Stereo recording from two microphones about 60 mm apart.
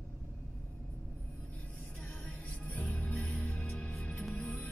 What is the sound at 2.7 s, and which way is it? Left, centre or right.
Music, left.